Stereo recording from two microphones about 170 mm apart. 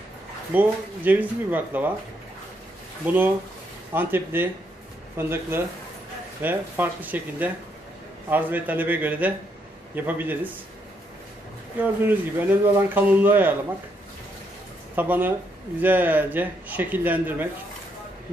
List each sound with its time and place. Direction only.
0.6 s speech: 10° right (ahead or behind)
3.9 s speech: 10° right (ahead or behind)
11.8 s speech: 10° right (ahead or behind)
15.0 s speech: 10° right (ahead or behind)